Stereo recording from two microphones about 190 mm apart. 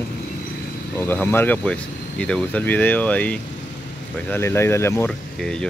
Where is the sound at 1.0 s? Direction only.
10° left (ahead or behind).